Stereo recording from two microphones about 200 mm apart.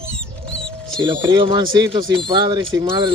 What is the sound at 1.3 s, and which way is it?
Speech, 25° right (ahead or behind).